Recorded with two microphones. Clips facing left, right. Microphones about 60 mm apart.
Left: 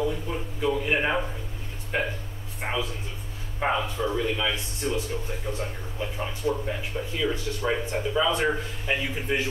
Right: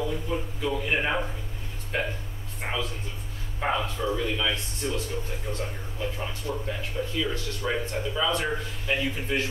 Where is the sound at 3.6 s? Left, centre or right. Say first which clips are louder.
Left 1 dB; centre.